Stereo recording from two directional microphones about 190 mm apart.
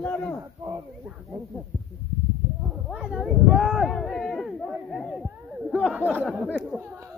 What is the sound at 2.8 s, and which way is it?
Speech, 5° right (ahead or behind).